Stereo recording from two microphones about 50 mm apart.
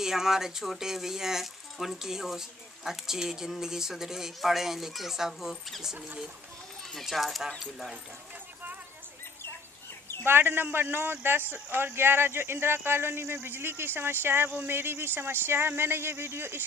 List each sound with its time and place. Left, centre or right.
0.0 s speech: centre
10.2 s speech: right